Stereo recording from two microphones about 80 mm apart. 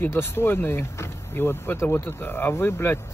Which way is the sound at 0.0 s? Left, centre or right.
Left.